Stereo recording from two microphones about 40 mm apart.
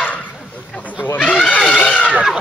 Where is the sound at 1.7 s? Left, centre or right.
Left.